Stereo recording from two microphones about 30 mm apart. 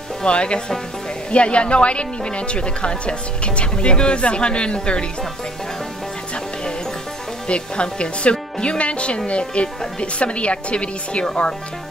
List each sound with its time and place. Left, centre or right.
0.2 s speech: left
7.4 s speech: left